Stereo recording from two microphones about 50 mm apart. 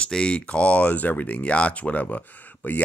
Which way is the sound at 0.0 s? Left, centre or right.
Centre.